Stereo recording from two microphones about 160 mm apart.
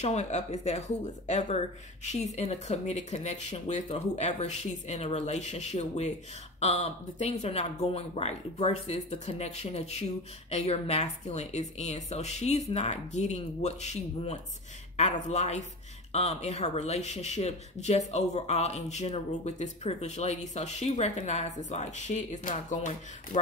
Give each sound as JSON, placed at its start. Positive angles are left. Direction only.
{"t": 0.0, "sound": "speech", "side_deg": 45}